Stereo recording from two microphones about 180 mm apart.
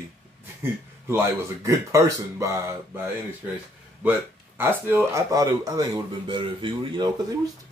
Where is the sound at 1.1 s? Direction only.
15° right (ahead or behind).